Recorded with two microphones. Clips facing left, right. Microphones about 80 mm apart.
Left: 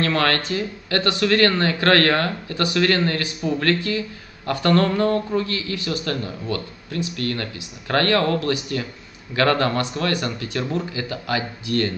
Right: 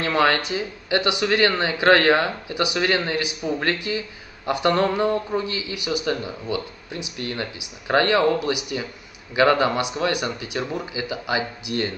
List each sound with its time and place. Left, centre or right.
0.0 s speech: centre